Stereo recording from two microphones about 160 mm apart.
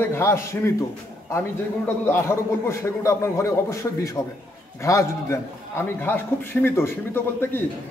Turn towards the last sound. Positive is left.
turn(degrees=15)  # may be behind; listen again after turning